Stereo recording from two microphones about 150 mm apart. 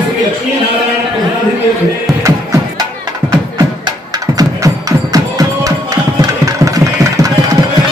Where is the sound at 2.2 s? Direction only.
20° right (ahead or behind).